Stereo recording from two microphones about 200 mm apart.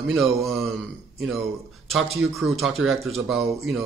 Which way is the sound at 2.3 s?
Centre (ahead or behind).